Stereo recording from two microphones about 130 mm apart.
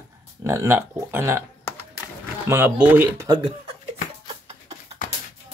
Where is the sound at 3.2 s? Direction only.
35° right (ahead or behind).